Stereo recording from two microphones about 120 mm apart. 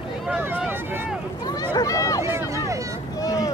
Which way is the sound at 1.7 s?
30° left (ahead or behind).